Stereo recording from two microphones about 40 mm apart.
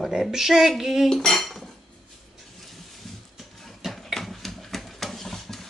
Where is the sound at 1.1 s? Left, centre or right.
Centre.